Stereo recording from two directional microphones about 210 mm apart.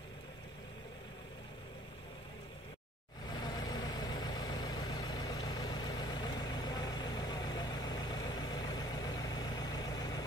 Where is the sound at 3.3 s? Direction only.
20° left (ahead or behind).